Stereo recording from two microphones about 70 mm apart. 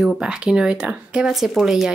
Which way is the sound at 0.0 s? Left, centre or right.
Centre.